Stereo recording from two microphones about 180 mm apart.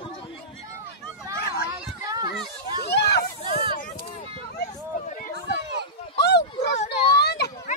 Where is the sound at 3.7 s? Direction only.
50° left (ahead or behind).